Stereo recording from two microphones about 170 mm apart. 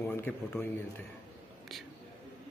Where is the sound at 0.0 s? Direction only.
15° left (ahead or behind).